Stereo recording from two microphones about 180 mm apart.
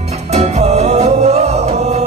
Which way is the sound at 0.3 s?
35° right (ahead or behind).